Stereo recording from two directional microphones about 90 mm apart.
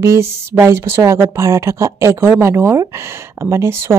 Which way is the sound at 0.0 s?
35° right (ahead or behind).